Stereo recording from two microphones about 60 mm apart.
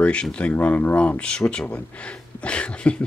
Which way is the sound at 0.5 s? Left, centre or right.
Left.